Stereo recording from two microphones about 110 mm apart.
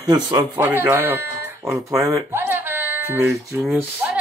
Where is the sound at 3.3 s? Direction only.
5° right (ahead or behind).